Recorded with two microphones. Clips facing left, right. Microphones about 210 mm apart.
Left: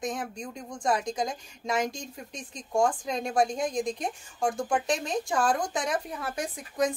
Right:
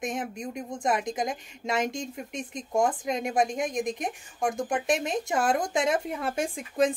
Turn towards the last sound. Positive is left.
turn(degrees=-30)  # may be behind; listen again after turning